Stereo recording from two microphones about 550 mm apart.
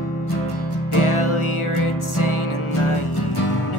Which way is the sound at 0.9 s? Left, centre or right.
Left.